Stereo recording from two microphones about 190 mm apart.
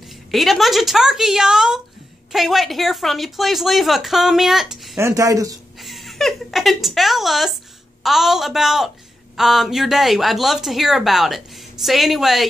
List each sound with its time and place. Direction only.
0.3 s speech: centre (ahead or behind)
4.9 s stir: 15° right (ahead or behind)
5.8 s a woman's voice: centre (ahead or behind)